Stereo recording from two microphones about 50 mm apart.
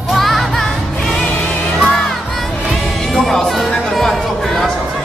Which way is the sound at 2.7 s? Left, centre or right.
Centre.